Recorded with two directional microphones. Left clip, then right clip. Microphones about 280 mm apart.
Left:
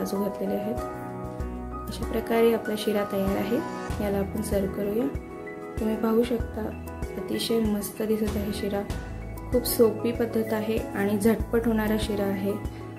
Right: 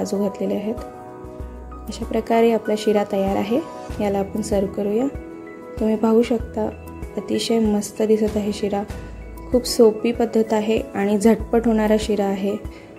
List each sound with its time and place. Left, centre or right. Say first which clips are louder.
0.0 s speech: right 6 dB; centre
1.9 s speech: right 7 dB; centre